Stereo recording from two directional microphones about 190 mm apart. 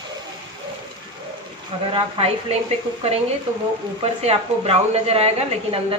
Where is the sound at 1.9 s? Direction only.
30° right (ahead or behind).